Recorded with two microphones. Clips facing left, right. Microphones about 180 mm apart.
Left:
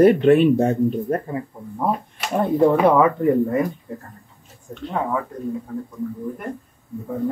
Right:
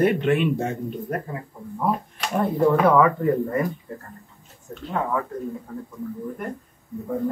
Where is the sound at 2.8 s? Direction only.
20° left (ahead or behind).